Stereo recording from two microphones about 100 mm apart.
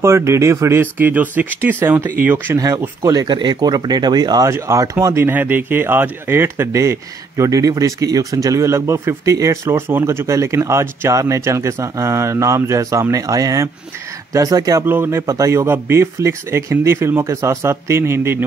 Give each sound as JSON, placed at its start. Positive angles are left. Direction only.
{"t": 0.0, "sound": "speech", "side_deg": -30}
{"t": 4.5, "sound": "speech", "side_deg": -30}
{"t": 14.9, "sound": "speech", "side_deg": -25}